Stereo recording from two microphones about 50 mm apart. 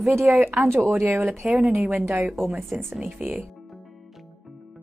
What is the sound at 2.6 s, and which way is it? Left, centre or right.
Speech, centre.